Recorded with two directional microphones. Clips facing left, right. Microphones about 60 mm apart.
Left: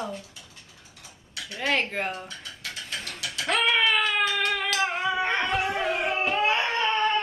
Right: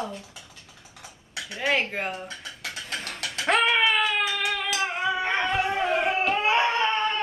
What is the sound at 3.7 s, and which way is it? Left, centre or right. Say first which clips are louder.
Baby cry: right 1 dB; centre.